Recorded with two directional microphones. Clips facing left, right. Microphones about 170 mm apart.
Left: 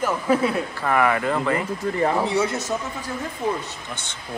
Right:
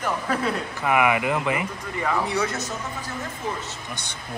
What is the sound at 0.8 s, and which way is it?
Speech, 10° right (ahead or behind).